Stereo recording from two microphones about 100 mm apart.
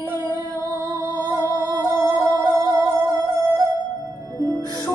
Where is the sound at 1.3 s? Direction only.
35° right (ahead or behind).